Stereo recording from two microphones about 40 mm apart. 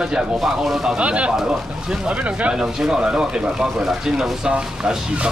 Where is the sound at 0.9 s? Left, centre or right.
Right.